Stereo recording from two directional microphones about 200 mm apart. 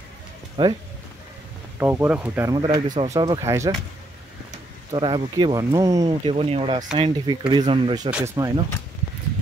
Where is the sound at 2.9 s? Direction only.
35° right (ahead or behind).